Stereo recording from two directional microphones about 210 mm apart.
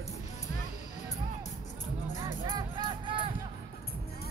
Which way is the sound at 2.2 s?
20° right (ahead or behind).